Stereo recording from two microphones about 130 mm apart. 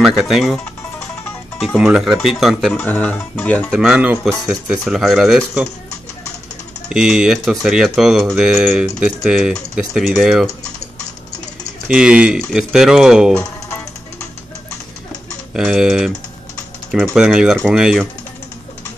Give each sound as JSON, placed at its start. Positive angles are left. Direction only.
{"t": 0.0, "sound": "speech", "side_deg": 0}
{"t": 1.9, "sound": "speech", "side_deg": -5}
{"t": 2.8, "sound": "speech", "side_deg": 15}
{"t": 3.7, "sound": "speech", "side_deg": -5}
{"t": 6.9, "sound": "speech", "side_deg": -5}
{"t": 11.9, "sound": "speech", "side_deg": -5}
{"t": 13.4, "sound": "music", "side_deg": 15}
{"t": 15.5, "sound": "speech", "side_deg": -5}
{"t": 17.1, "sound": "speech", "side_deg": -5}